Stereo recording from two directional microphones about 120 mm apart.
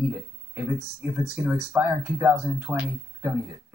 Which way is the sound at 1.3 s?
15° right (ahead or behind).